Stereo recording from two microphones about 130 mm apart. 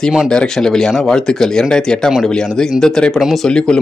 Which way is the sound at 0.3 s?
5° left (ahead or behind).